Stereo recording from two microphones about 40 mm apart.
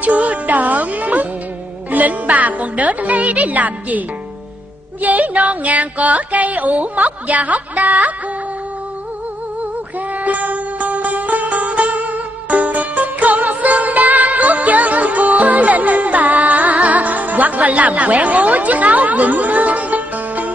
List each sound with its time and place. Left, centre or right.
0.0 s music: right
5.0 s music: right
9.9 s music: right